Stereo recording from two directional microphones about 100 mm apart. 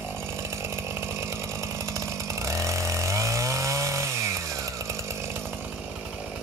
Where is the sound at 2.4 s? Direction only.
30° right (ahead or behind).